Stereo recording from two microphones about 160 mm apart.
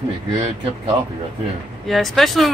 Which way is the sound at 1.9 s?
Centre (ahead or behind).